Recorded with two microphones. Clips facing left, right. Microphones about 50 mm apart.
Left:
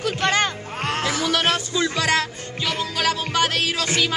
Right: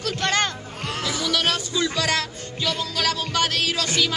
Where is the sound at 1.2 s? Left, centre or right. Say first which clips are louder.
Left 1 dB; left.